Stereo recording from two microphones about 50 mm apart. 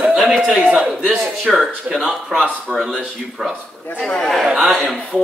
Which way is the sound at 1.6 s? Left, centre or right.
Centre.